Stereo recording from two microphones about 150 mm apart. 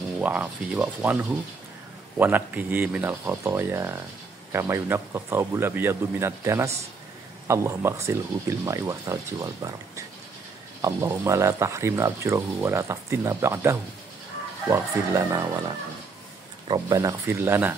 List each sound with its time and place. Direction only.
0.2 s speech: 10° right (ahead or behind)